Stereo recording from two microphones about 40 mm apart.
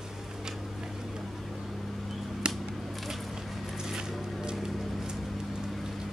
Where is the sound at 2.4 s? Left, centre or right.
Right.